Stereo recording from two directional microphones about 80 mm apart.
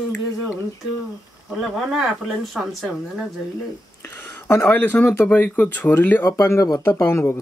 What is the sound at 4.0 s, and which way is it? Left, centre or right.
Speech, left.